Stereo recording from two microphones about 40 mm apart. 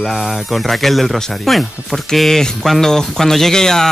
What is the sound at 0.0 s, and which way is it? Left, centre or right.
Speech, centre.